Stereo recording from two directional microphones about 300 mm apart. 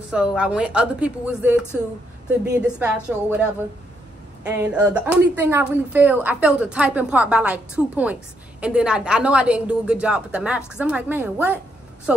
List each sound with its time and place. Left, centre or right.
0.1 s speech: centre